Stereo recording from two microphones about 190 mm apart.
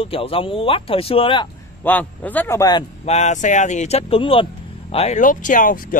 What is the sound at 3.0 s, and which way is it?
Speech, 35° left (ahead or behind).